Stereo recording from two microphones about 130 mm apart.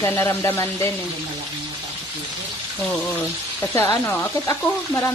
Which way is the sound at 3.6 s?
20° left (ahead or behind).